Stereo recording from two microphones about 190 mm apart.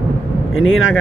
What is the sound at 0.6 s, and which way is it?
Speech, 90° left.